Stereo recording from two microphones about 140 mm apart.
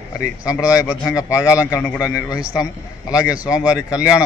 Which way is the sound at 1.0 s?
25° left (ahead or behind).